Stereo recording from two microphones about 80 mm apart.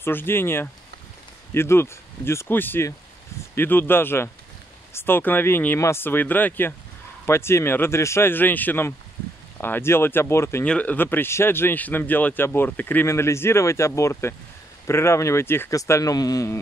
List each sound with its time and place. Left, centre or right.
0.0 s speech: left
10.6 s speech: centre
15.7 s speech: left